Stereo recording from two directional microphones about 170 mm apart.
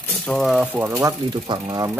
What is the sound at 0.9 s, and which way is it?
Speech, 25° right (ahead or behind).